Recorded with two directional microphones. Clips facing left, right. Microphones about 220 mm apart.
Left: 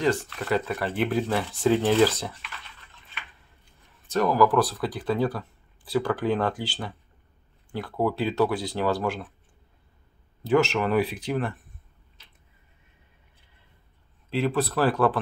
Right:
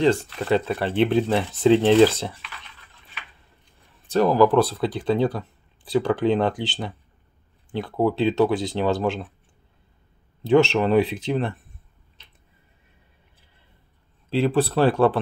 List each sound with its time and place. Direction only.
0.0 s speech: 25° right (ahead or behind)
4.1 s speech: 30° right (ahead or behind)
10.4 s speech: 25° right (ahead or behind)
14.3 s speech: 30° right (ahead or behind)